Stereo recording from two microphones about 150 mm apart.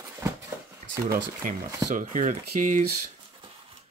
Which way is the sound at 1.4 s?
65° right (ahead or behind).